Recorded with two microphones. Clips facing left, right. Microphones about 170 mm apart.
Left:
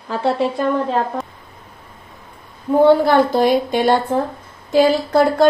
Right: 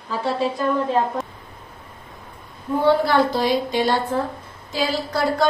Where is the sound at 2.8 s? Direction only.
50° left (ahead or behind).